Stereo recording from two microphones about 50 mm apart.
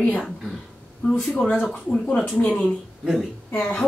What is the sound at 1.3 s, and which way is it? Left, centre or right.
Speech, left.